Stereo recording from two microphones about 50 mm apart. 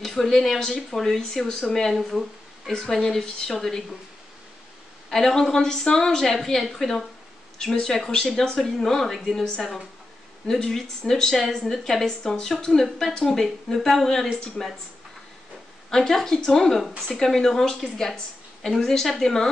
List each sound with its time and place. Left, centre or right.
0.0 s speech: centre
5.1 s speech: centre
15.9 s speech: centre